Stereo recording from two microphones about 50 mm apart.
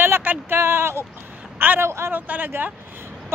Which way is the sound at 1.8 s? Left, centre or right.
Right.